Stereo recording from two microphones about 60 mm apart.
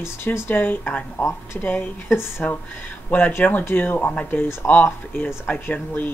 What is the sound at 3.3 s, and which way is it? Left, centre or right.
Speech, left.